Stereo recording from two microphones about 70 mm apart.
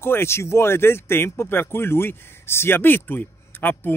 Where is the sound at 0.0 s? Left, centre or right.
Left.